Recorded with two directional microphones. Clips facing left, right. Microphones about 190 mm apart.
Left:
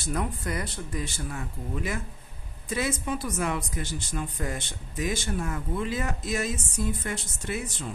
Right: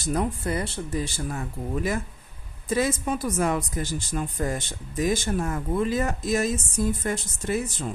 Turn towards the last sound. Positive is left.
turn(degrees=-40)  # may be behind; listen again after turning